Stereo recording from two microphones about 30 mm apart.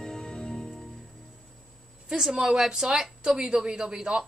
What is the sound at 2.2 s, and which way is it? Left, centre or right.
A woman's voice, right.